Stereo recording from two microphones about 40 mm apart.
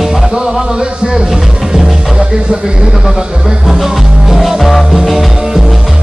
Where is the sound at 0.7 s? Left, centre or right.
Centre.